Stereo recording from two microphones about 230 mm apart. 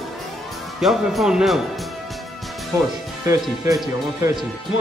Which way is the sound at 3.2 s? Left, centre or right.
Centre.